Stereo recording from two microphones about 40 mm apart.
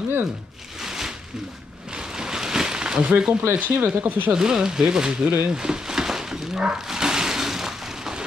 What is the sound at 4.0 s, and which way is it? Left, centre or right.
Speech, right.